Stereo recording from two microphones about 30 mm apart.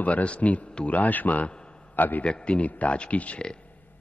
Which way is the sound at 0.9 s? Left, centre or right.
Left.